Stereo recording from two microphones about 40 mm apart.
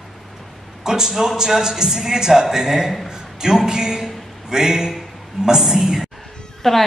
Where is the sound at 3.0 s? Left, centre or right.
Centre.